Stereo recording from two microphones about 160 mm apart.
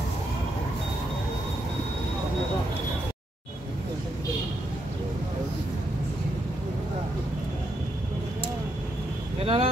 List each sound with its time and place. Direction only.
9.4 s vehicle: 35° right (ahead or behind)